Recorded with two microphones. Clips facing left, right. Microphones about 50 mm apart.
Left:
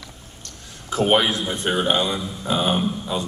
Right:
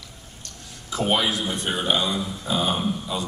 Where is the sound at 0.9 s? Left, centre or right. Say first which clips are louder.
Left 4 dB; left.